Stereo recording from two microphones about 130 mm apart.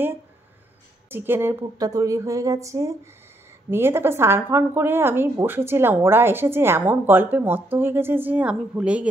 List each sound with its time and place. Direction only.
1.1 s a woman's voice: 15° right (ahead or behind)